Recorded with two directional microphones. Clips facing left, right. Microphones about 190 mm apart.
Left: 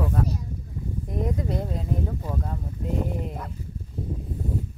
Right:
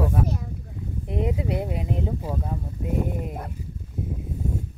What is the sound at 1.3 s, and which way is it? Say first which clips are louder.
Speech: right 2 dB; 15° right (ahead or behind).